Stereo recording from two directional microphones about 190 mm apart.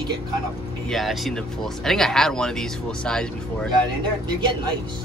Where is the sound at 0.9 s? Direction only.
Centre (ahead or behind).